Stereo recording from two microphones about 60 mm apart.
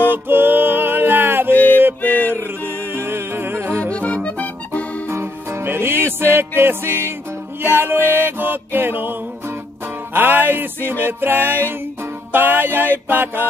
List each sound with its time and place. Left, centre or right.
0.1 s music: right
1.5 s music: left
3.0 s music: right
3.9 s accordion: centre
5.1 s music: right
10.1 s music: right